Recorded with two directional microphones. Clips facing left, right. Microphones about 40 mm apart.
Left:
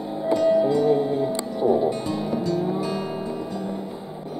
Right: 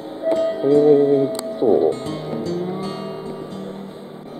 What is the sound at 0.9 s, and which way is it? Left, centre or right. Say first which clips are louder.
Music: right 7 dB; right.